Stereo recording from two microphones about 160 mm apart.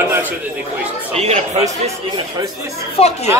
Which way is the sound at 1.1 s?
40° right (ahead or behind).